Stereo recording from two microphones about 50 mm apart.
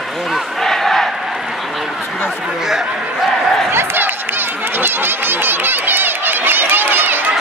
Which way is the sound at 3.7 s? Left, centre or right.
Right.